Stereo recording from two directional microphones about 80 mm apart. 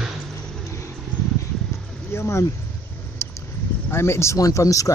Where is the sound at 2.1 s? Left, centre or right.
Left.